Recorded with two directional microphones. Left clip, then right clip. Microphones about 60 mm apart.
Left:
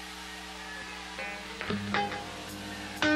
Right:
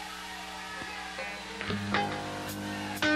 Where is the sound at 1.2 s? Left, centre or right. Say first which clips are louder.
Even; left.